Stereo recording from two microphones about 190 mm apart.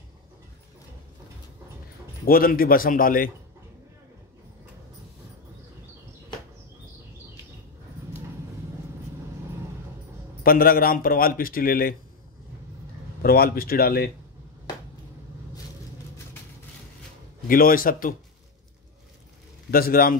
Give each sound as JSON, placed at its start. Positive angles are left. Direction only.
{"t": 2.2, "sound": "a man's voice", "side_deg": 50}
{"t": 10.4, "sound": "a man's voice", "side_deg": 50}
{"t": 13.2, "sound": "a man's voice", "side_deg": 50}
{"t": 17.5, "sound": "a man's voice", "side_deg": 50}
{"t": 19.7, "sound": "a man's voice", "side_deg": 50}